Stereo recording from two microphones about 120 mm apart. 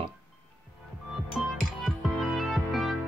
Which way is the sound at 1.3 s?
Centre (ahead or behind).